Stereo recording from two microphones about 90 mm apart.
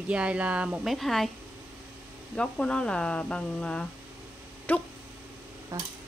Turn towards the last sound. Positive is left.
turn(degrees=-35)  # may be behind; listen again after turning